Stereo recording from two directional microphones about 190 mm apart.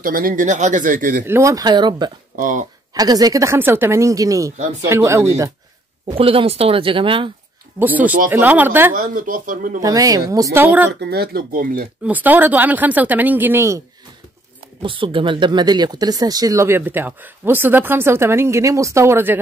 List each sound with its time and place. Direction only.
0.0 s speech: 45° right (ahead or behind)
1.2 s speech: 15° right (ahead or behind)
2.3 s speech: 45° right (ahead or behind)
2.9 s speech: 20° right (ahead or behind)
6.1 s speech: 30° right (ahead or behind)
7.8 s speech: 10° right (ahead or behind)
8.9 s speech: 45° right (ahead or behind)
9.8 s speech: 20° right (ahead or behind)
10.9 s speech: 60° right (ahead or behind)
12.0 s speech: 10° right (ahead or behind)
14.8 s speech: 25° right (ahead or behind); by 19.4 s 10° right (ahead or behind)